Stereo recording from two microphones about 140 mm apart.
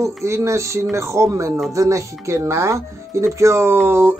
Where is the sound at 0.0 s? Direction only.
20° right (ahead or behind).